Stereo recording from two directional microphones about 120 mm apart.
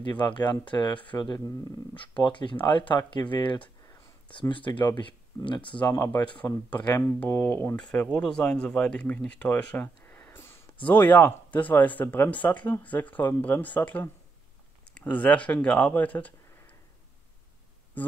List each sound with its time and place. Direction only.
0.1 s speech: 40° left (ahead or behind)
5.9 s speech: 25° left (ahead or behind)